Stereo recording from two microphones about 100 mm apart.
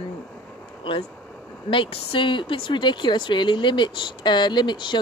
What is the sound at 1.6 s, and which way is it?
Speech, 55° left (ahead or behind).